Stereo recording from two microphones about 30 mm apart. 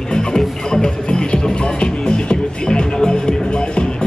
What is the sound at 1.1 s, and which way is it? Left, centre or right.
Music, left.